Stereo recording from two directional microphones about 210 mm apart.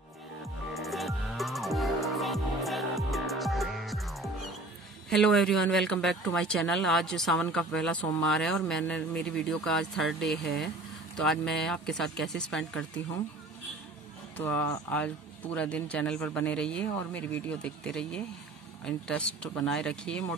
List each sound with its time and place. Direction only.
0.7 s music: centre (ahead or behind)
5.1 s speech: centre (ahead or behind)
14.3 s speech: 10° left (ahead or behind)